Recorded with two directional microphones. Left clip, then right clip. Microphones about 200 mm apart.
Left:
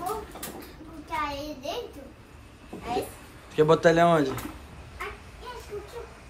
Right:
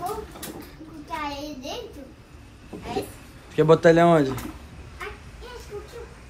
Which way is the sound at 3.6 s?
15° left (ahead or behind).